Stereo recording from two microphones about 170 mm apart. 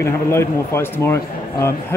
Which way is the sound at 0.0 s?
15° left (ahead or behind).